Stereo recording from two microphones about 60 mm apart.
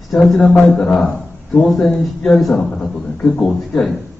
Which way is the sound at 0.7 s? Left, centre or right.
Centre.